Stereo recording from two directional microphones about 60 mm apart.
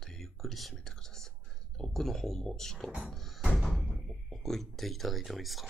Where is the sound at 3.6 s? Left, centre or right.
Centre.